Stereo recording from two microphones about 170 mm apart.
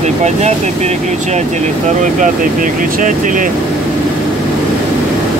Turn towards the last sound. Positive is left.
turn(degrees=-50)  # may be behind; listen again after turning